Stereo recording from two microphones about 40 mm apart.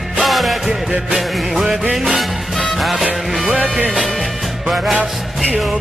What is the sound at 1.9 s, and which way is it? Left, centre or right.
Music, centre.